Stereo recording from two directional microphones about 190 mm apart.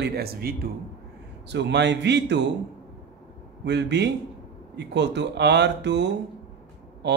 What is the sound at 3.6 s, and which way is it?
Speech, 65° right (ahead or behind).